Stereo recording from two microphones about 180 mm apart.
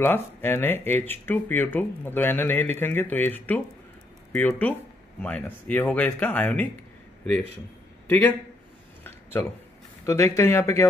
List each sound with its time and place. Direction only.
0.0 s speech: 10° left (ahead or behind)
8.1 s speech: 10° left (ahead or behind)
9.0 s a sound: 10° left (ahead or behind)
10.0 s speech: 15° left (ahead or behind)